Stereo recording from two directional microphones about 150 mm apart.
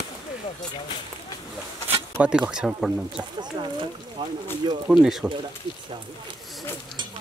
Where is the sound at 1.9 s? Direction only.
5° right (ahead or behind).